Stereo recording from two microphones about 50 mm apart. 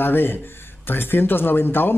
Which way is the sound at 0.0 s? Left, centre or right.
Left.